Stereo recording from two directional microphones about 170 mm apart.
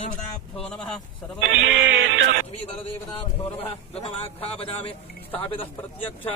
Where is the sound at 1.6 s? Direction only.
90° right.